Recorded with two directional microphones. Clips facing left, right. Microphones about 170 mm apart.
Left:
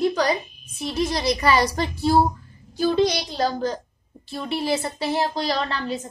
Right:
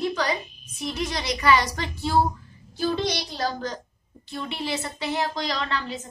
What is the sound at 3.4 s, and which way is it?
Speech, 35° left (ahead or behind).